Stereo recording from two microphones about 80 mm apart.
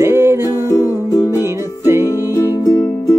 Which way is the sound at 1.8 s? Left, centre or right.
Right.